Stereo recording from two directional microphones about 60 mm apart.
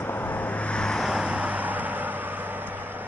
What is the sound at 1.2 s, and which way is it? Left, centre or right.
Vehicle, right.